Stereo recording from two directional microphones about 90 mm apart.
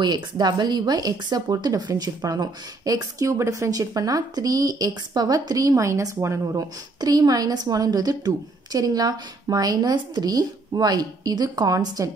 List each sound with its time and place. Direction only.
0.0 s speech: 50° right (ahead or behind)